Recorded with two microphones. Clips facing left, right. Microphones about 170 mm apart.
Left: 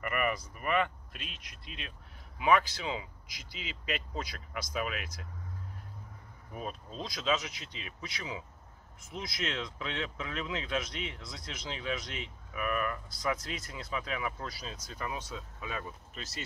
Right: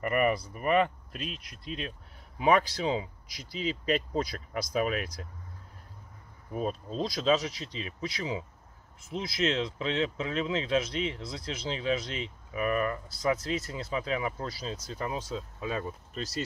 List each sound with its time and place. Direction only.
0.0 s speech: 35° right (ahead or behind)
6.5 s speech: 35° right (ahead or behind)